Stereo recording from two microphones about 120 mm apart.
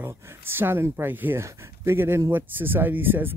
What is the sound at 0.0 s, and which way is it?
Speech, 20° right (ahead or behind).